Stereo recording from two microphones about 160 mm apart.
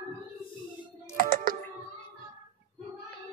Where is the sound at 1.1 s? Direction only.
60° right (ahead or behind).